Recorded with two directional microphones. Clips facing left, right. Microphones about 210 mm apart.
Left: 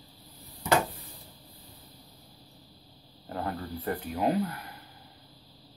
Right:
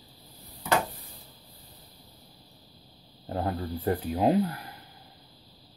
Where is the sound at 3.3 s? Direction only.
30° right (ahead or behind).